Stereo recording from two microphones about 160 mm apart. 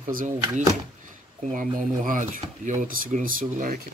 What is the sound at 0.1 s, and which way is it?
Speech, 55° right (ahead or behind).